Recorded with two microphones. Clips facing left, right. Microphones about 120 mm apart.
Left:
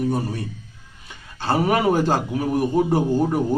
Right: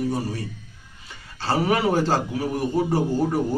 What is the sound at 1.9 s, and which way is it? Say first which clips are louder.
A man's voice: left 2 dB; 15° left (ahead or behind).